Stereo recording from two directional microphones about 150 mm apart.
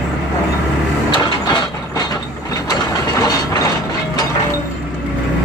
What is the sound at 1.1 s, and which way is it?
Mechanisms, 30° left (ahead or behind).